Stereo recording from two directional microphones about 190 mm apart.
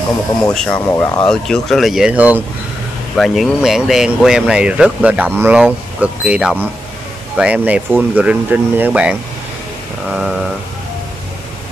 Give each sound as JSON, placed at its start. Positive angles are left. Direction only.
{"t": 0.5, "sound": "speech", "side_deg": 5}
{"t": 1.2, "sound": "speech", "side_deg": 5}
{"t": 10.1, "sound": "speech", "side_deg": -5}